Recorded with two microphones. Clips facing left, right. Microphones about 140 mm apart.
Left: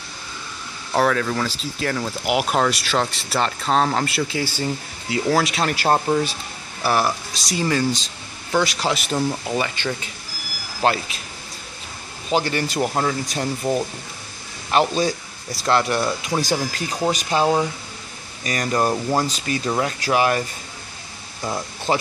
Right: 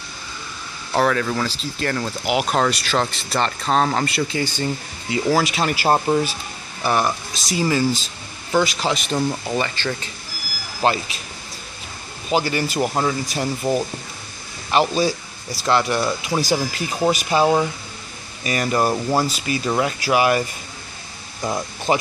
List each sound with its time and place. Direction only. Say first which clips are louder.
0.9 s speech: even; centre (ahead or behind)
10.8 s speech: even; centre (ahead or behind)
12.3 s speech: right 1 dB; 5° right (ahead or behind)